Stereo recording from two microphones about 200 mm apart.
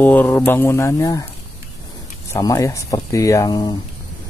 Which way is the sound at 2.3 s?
15° left (ahead or behind).